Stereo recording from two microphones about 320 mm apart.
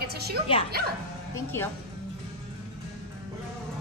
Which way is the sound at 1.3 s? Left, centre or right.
Centre.